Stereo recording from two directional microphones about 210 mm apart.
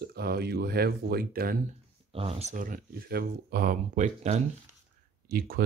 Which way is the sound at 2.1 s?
30° right (ahead or behind).